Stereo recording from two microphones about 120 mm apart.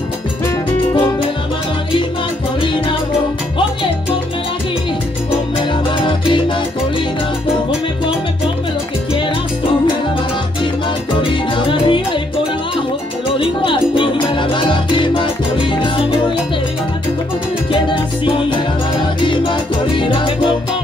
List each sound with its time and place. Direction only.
6.0 s music: 45° left (ahead or behind)
11.1 s music: 45° left (ahead or behind)
13.3 s music: 45° left (ahead or behind)
17.6 s salsa music: 50° left (ahead or behind)
19.2 s music: 45° left (ahead or behind)